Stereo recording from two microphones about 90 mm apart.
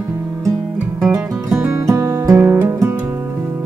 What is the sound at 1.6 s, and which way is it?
Music, 35° right (ahead or behind).